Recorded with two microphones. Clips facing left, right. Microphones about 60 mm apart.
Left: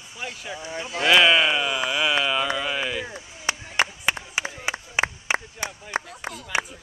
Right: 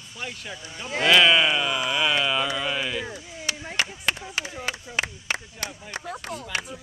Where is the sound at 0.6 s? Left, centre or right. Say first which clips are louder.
Left 7 dB; left.